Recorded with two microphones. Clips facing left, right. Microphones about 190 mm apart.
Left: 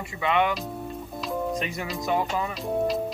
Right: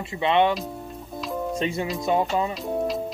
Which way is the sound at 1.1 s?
Centre (ahead or behind).